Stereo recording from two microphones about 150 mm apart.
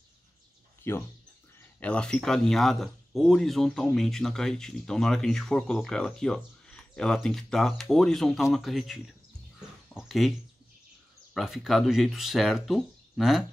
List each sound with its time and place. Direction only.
0.8 s speech: 15° left (ahead or behind); by 9.1 s centre (ahead or behind)
9.6 s a sound: centre (ahead or behind)
11.3 s speech: centre (ahead or behind)